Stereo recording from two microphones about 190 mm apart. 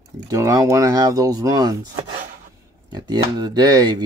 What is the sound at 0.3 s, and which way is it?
Speech, 15° right (ahead or behind).